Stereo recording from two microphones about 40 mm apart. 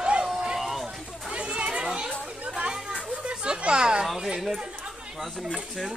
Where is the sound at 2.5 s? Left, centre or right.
Centre.